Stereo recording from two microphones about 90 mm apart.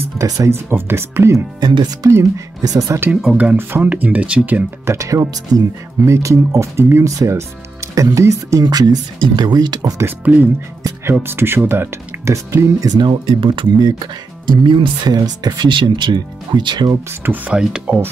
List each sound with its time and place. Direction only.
0.2 s speech: 30° right (ahead or behind)
1.6 s speech: 60° right (ahead or behind)
2.0 s speech: 30° right (ahead or behind)
3.3 s speech: 20° right (ahead or behind)
4.8 s speech: 35° right (ahead or behind)
10.0 s speech: 20° right (ahead or behind)
12.8 s speech: 45° right (ahead or behind)
13.3 s speech: 70° right (ahead or behind)
13.7 s speech: 50° right (ahead or behind)
15.1 s speech: 45° right (ahead or behind)
17.2 s speech: 20° right (ahead or behind)
17.6 s speech: 10° right (ahead or behind)